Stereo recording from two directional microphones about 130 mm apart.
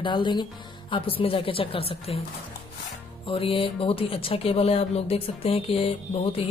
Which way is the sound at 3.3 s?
45° left (ahead or behind).